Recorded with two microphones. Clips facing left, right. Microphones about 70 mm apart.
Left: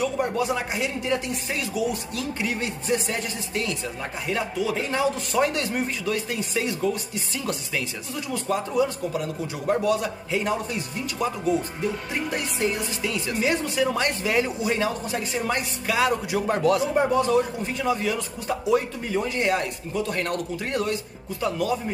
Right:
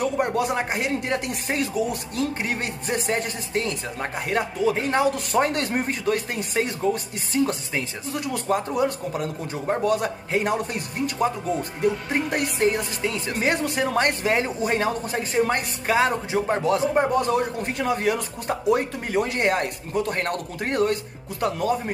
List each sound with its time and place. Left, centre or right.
0.0 s speech: right
1.5 s speech: right
5.0 s speech: right
12.5 s speech: right